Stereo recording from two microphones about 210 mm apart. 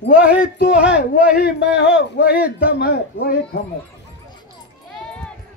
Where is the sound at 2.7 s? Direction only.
45° left (ahead or behind).